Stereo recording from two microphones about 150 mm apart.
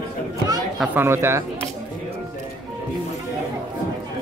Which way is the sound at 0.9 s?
15° right (ahead or behind).